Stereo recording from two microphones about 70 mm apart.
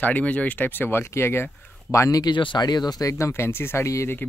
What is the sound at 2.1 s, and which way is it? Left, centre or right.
Speech, left.